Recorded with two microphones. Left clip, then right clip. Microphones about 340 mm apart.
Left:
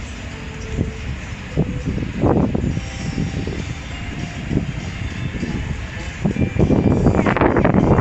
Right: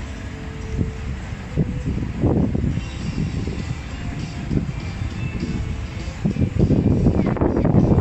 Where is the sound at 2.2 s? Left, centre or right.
Left.